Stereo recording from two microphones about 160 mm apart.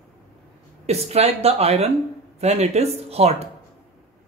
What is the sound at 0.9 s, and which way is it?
Speech, 40° right (ahead or behind).